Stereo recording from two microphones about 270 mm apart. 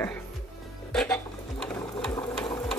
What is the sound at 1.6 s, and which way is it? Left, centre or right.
Sewing machine, centre.